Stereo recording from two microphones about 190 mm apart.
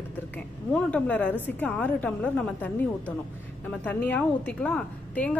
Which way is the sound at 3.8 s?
10° left (ahead or behind).